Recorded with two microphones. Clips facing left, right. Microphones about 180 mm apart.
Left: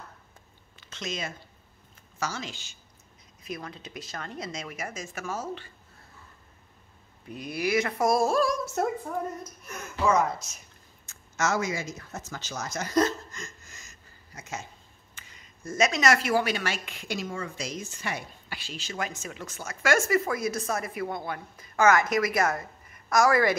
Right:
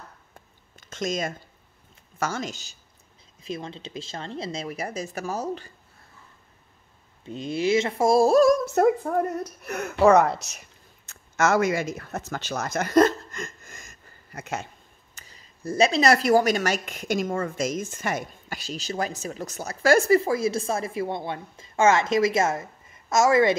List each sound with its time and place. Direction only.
0.7 s a sound: 45° right (ahead or behind)
2.1 s speech: 50° right (ahead or behind)
3.4 s speech: 25° right (ahead or behind)
7.2 s speech: 25° right (ahead or behind); by 8.5 s 40° right (ahead or behind)
8.7 s speech: 65° right (ahead or behind)
11.1 s speech: 60° right (ahead or behind)
15.1 s speech: 35° right (ahead or behind)